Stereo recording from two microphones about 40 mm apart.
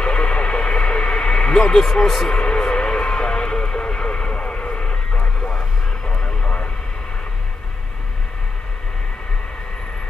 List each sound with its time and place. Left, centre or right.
0.0 s radio: left
2.3 s radio: left
6.0 s a sound: centre